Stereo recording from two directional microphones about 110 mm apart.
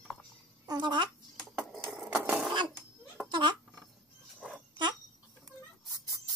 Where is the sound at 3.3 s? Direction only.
45° right (ahead or behind).